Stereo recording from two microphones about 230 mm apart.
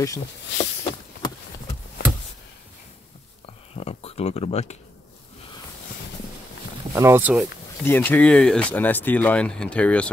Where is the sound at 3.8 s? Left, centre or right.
Left.